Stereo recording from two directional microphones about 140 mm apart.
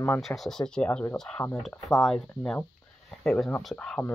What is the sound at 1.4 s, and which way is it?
Speech, 25° left (ahead or behind).